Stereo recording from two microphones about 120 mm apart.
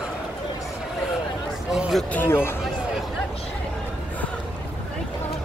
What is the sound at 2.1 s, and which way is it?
Speech, 20° left (ahead or behind).